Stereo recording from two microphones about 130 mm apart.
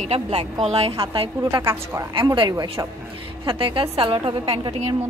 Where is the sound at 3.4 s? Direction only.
40° right (ahead or behind).